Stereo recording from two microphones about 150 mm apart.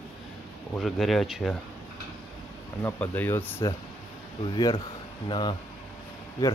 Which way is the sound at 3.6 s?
25° left (ahead or behind).